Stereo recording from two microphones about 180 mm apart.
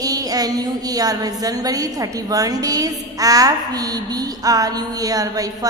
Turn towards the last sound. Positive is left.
turn(degrees=-20)  # may be behind; listen again after turning